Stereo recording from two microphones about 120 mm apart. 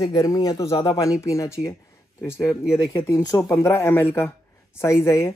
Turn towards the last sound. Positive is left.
turn(degrees=25)  # may be behind; listen again after turning